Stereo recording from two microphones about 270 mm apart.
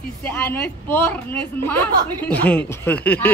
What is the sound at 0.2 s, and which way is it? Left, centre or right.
A woman's voice, centre.